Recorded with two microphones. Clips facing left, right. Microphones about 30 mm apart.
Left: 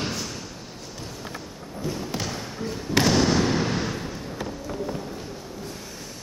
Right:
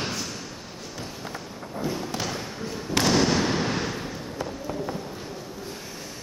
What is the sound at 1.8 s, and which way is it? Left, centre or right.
Thump, right.